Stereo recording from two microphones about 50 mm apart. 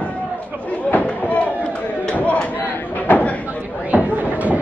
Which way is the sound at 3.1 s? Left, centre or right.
Left.